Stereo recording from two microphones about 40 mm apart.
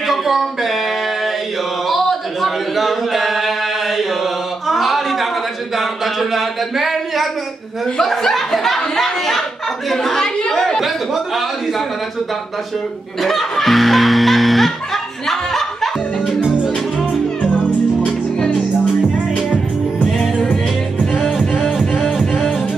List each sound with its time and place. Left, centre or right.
0.1 s music: centre
1.9 s a sound: centre
4.6 s a sound: centre
5.8 s speech: centre
8.0 s speech: centre
13.2 s music: centre
17.4 s music: left